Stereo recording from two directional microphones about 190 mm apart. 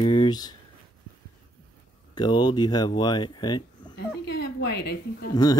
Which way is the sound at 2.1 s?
20° left (ahead or behind).